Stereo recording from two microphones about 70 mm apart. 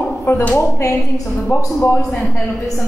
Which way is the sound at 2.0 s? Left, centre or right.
Centre.